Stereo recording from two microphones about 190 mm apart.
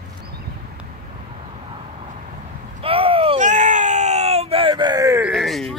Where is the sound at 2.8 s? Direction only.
30° right (ahead or behind).